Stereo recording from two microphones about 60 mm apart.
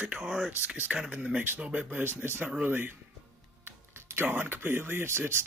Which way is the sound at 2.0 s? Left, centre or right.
Right.